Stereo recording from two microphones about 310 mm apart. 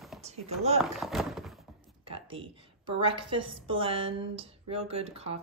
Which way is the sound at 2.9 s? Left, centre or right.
Centre.